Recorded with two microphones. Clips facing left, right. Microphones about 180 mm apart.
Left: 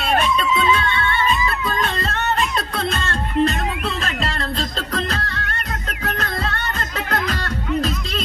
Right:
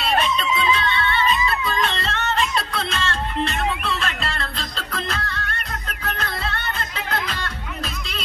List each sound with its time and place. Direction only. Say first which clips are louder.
0.0 s music: left 2 dB; 50° left (ahead or behind)
0.5 s music: left 3 dB; 25° right (ahead or behind)
1.7 s music: left 1 dB; 45° left (ahead or behind)